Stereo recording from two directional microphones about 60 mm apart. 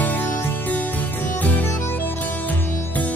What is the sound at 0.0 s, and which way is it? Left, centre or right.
Music, left.